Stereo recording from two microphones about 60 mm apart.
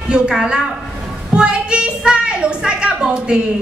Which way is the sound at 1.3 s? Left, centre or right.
Centre.